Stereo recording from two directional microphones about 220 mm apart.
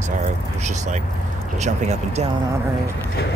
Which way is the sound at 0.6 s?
30° right (ahead or behind).